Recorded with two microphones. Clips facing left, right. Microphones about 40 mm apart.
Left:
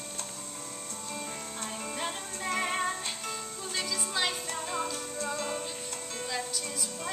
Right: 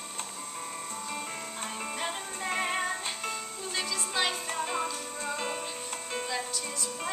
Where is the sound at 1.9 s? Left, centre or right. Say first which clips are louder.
Right 1 dB; centre.